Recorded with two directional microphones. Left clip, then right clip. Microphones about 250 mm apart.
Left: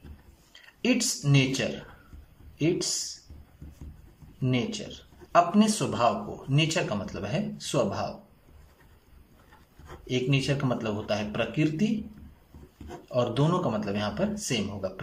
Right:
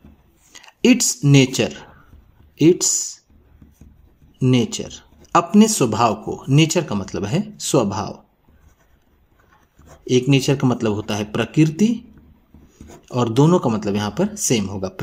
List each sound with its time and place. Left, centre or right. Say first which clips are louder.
0.5 s speech: right 11 dB; right
4.4 s speech: right 10 dB; right
10.0 s speech: right 11 dB; right
13.1 s speech: right 9 dB; right